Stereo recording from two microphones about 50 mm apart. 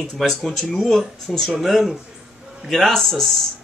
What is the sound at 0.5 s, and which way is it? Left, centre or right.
Speech, centre.